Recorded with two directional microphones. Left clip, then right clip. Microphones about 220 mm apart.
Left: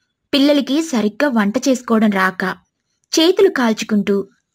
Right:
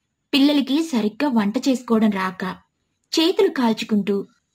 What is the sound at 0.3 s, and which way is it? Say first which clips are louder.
A woman's voice: left 4 dB; 30° left (ahead or behind).